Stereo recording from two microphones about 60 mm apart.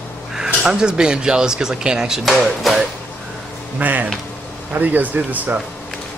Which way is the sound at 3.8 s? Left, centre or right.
Right.